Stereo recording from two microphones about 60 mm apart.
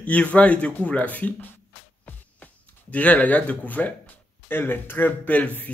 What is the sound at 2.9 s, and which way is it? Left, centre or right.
Speech, left.